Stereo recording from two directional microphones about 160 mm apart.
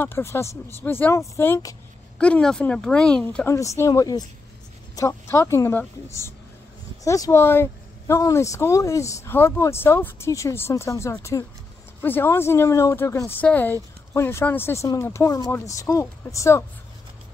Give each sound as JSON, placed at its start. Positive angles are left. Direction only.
{"t": 0.0, "sound": "speech", "side_deg": 15}
{"t": 2.1, "sound": "speech", "side_deg": 5}
{"t": 3.4, "sound": "speech", "side_deg": 20}